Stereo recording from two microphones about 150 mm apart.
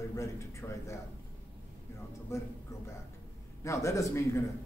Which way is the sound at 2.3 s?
20° left (ahead or behind).